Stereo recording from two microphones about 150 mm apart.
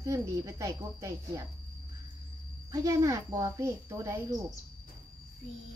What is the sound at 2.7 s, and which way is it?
Speech, 20° right (ahead or behind).